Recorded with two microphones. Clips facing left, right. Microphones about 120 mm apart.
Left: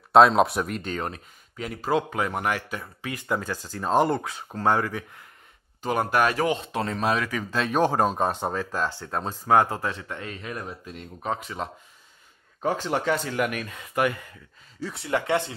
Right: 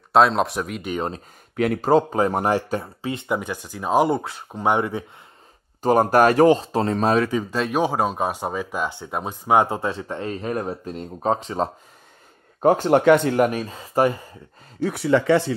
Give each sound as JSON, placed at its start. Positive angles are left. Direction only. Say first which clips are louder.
{"t": 0.1, "sound": "speech", "louder": "left 1 dB", "side_deg": 0}
{"t": 0.9, "sound": "speech", "louder": "right 8 dB", "side_deg": -25}
{"t": 1.6, "sound": "speech", "louder": "right 12 dB", "side_deg": -55}
{"t": 1.9, "sound": "speech", "louder": "right 6 dB", "side_deg": -35}
{"t": 3.0, "sound": "speech", "louder": "right 4 dB", "side_deg": -25}
{"t": 5.8, "sound": "speech", "louder": "right 7 dB", "side_deg": -40}
{"t": 7.5, "sound": "speech", "louder": "left 1 dB", "side_deg": -5}
{"t": 12.5, "sound": "speech", "louder": "right 9 dB", "side_deg": -50}
{"t": 13.5, "sound": "speech", "louder": "right 6 dB", "side_deg": -30}
{"t": 14.8, "sound": "speech", "louder": "right 10 dB", "side_deg": -65}